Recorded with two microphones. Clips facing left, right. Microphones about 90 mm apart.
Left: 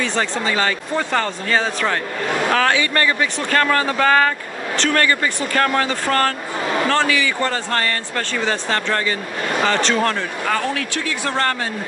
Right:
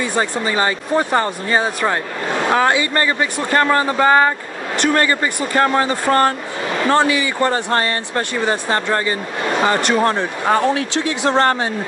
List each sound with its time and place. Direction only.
0.0 s speech: 15° right (ahead or behind)